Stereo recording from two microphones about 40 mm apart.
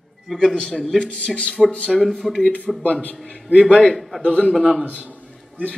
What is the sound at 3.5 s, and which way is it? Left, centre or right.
Speech, right.